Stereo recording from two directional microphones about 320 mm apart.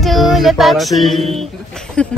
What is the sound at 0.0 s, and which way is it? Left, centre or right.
Speech, centre.